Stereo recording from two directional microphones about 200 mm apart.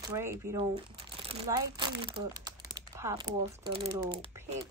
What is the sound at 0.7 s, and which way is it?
Crumpling, 30° right (ahead or behind).